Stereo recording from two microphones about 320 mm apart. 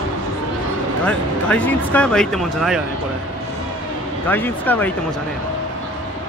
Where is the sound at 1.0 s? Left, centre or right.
Centre.